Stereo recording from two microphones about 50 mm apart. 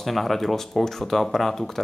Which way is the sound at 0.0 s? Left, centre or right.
Centre.